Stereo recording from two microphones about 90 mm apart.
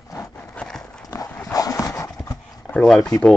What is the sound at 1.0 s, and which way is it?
Dog, 35° left (ahead or behind).